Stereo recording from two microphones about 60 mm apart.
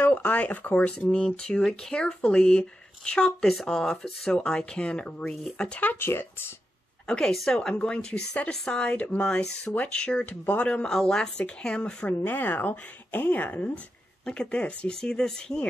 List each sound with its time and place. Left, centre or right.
0.0 s a woman's voice: left
0.9 s speech: centre
5.3 s speech: centre
5.9 s speech: left
7.1 s a woman's voice: centre; by 10.7 s left
10.7 s speech: centre
12.2 s a woman's voice: left
14.2 s speech: centre